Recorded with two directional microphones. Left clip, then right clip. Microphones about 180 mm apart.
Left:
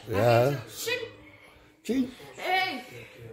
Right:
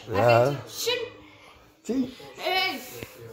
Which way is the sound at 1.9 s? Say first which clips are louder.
Right 1 dB; 15° left (ahead or behind).